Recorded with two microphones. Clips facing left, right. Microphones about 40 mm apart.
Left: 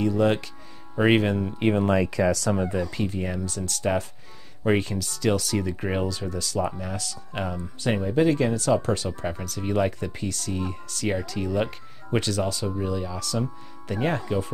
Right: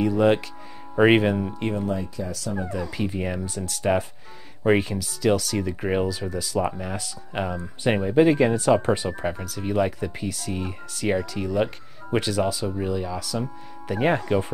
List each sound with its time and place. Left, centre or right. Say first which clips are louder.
0.0 s speech: right 2 dB; centre
1.9 s speech: left 7 dB; left
2.8 s speech: even; centre
9.3 s speech: even; centre
13.9 s speech: right 4 dB; centre